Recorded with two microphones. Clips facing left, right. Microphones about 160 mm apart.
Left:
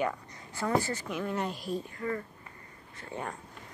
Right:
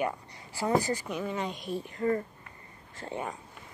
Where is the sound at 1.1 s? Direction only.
Centre (ahead or behind).